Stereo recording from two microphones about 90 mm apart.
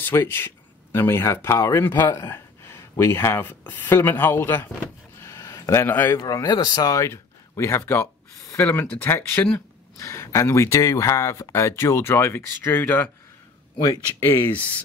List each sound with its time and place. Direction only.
0.0 s speech: 25° left (ahead or behind)
5.2 s a sound: 35° left (ahead or behind)
5.9 s speech: 20° left (ahead or behind)
6.1 s speech: 40° left (ahead or behind)
7.1 s a sound: 30° left (ahead or behind)
8.9 s speech: 25° left (ahead or behind)
9.9 s speech: 35° left (ahead or behind)